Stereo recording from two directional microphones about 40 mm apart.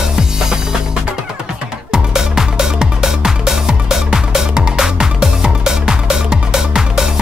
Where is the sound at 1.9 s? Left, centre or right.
Centre.